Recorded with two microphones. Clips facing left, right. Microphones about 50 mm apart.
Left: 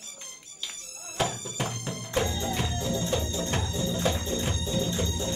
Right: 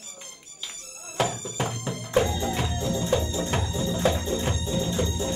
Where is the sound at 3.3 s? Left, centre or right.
Centre.